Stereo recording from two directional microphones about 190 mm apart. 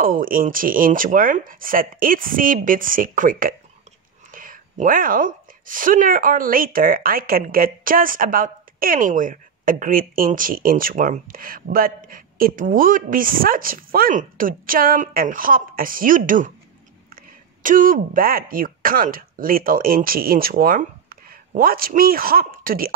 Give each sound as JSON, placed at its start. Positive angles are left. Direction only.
{"t": 0.0, "sound": "a woman's voice", "side_deg": -50}
{"t": 17.6, "sound": "a woman's voice", "side_deg": -45}